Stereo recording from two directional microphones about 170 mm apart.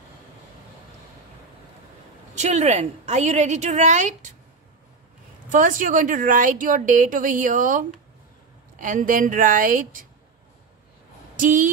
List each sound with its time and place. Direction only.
2.3 s a woman's voice: 40° right (ahead or behind)
5.5 s a woman's voice: 50° right (ahead or behind)
11.3 s a woman's voice: 50° right (ahead or behind)